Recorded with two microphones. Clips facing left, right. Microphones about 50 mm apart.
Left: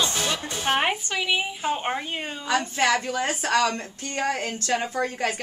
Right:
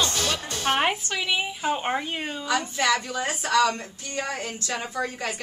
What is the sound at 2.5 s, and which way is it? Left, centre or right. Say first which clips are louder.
A woman's voice: left 2 dB; left.